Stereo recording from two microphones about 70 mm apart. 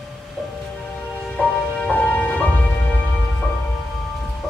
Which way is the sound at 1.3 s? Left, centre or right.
Left.